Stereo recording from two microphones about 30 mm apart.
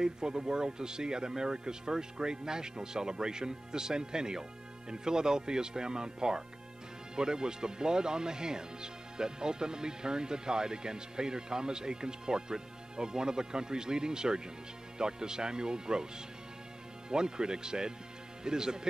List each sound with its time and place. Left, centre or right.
0.0 s speech: right
17.1 s speech: right